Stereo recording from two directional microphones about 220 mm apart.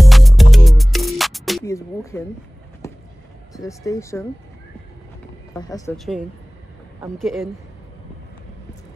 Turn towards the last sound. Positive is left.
turn(degrees=0)  # may be behind; listen again after turning